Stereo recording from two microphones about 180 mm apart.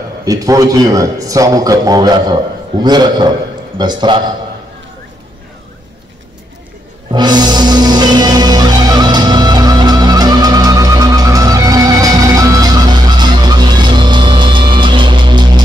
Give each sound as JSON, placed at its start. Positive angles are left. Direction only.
{"t": 0.2, "sound": "a man's voice", "side_deg": -20}
{"t": 7.1, "sound": "music", "side_deg": -25}